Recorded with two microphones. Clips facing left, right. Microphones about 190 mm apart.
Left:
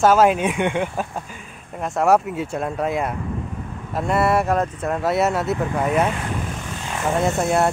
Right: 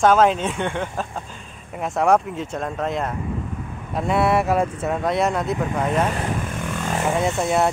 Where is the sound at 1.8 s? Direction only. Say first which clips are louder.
Left 1 dB; centre (ahead or behind).